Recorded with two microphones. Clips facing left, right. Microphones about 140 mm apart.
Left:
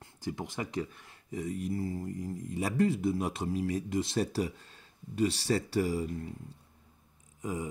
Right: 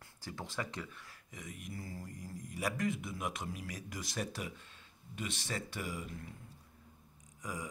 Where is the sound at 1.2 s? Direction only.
35° left (ahead or behind).